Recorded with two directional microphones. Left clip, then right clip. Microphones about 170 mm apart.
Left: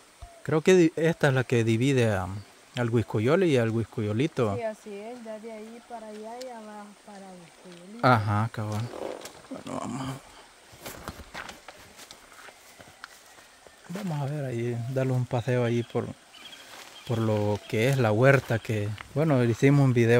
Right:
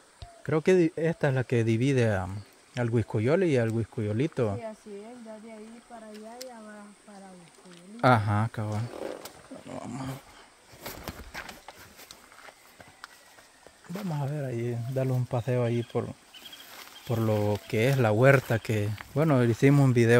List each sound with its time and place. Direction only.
0.5 s speech: 10° left (ahead or behind)
8.0 s speech: 5° right (ahead or behind)
8.9 s speech: 20° right (ahead or behind)
9.7 s speech: 25° left (ahead or behind)
10.8 s walk: 25° right (ahead or behind)
13.9 s speech: 5° right (ahead or behind)